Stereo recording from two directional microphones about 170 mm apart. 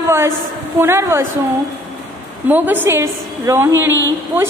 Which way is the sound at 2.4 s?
10° right (ahead or behind).